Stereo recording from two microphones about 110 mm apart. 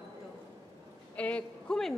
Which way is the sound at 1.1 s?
10° left (ahead or behind).